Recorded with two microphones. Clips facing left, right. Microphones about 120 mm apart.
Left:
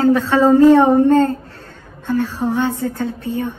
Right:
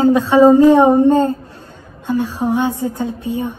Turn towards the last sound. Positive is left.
turn(degrees=-15)  # may be behind; listen again after turning